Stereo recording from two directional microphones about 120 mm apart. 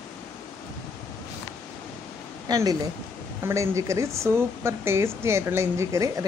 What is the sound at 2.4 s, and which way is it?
A woman's voice, 30° right (ahead or behind).